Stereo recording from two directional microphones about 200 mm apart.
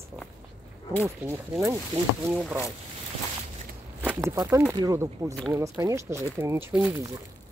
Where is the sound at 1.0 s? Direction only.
10° right (ahead or behind).